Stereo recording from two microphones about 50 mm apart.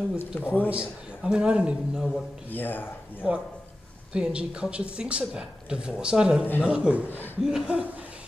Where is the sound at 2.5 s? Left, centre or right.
Left.